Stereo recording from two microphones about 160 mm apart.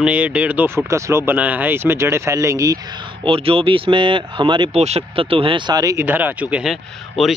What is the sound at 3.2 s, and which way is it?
Speech, 35° right (ahead or behind).